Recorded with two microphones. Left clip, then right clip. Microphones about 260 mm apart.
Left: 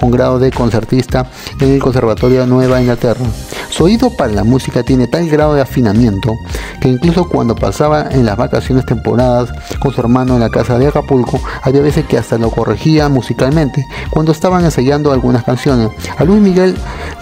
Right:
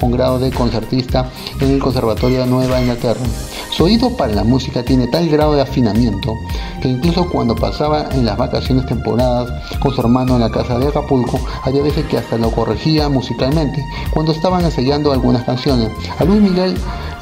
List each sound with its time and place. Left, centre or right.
0.1 s speech: left